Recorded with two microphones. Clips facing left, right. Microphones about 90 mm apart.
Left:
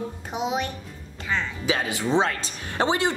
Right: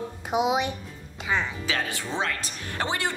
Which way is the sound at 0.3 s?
15° right (ahead or behind).